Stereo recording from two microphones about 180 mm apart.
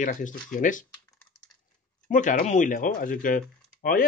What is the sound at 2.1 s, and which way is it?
A man's voice, 45° left (ahead or behind).